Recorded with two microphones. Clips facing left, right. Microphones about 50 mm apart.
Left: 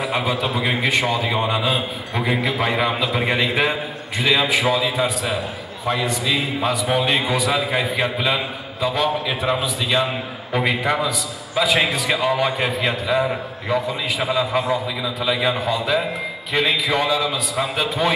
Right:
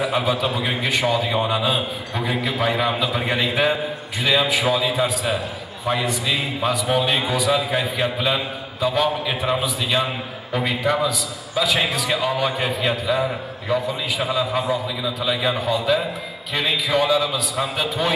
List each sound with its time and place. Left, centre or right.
0.1 s a man's voice: centre
6.9 s a man's voice: centre
10.5 s a man's voice: centre